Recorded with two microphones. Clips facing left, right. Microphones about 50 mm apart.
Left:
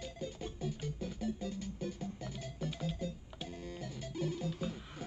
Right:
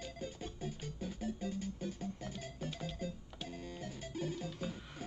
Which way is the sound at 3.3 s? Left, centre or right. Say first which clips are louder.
Left 1 dB; centre.